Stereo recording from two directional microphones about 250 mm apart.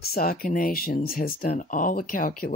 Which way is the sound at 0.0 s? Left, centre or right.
Left.